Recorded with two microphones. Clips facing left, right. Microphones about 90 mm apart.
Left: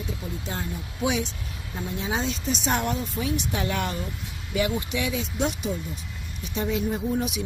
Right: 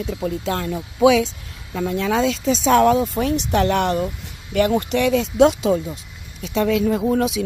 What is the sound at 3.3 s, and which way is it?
Speech, 60° right (ahead or behind).